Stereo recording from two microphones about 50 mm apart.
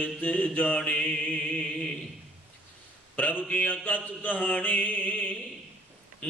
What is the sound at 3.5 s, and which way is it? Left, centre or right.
Mantra, left.